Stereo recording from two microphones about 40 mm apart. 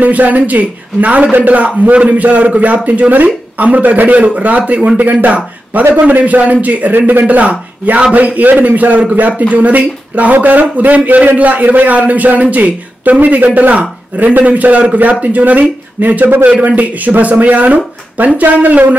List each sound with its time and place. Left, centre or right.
0.0 s a man's voice: right
7.2 s a man's voice: right